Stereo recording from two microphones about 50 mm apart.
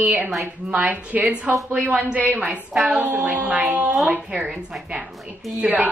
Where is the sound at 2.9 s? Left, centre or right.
Right.